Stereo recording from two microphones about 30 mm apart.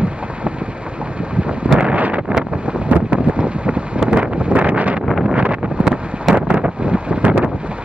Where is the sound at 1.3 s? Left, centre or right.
Right.